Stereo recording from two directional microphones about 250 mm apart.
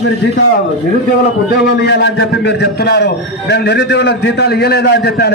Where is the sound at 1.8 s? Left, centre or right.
Left.